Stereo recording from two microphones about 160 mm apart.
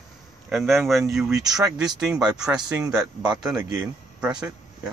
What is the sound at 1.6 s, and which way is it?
Speech, 25° right (ahead or behind).